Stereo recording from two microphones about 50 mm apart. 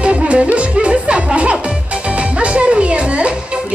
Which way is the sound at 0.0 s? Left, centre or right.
Right.